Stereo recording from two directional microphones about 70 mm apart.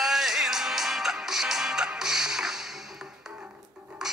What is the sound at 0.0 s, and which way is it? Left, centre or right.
Music, centre.